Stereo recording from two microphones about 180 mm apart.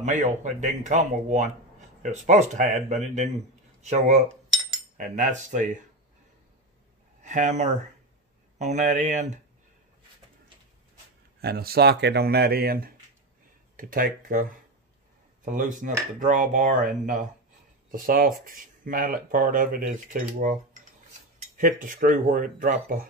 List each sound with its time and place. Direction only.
0.0 s speech: 40° right (ahead or behind)
7.2 s speech: 45° right (ahead or behind)
11.4 s speech: 60° right (ahead or behind)
15.4 s speech: 45° right (ahead or behind)